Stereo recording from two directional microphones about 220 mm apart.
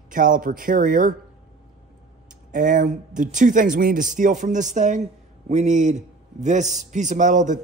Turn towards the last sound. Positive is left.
turn(degrees=-35)  # may be behind; listen again after turning